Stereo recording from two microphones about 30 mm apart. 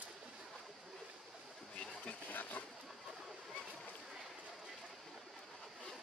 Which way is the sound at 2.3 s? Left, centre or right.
Left.